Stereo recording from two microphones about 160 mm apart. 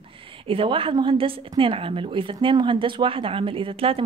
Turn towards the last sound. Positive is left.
turn(degrees=-35)  # may be behind; listen again after turning